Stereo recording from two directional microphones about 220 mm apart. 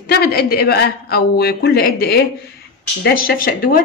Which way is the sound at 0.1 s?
45° left (ahead or behind).